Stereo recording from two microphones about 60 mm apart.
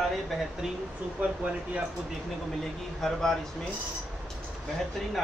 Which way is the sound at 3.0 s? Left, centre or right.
Centre.